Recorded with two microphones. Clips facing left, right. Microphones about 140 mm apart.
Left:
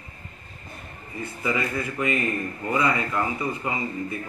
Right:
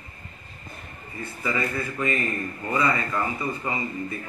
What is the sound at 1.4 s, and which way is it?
A man's voice, 15° left (ahead or behind).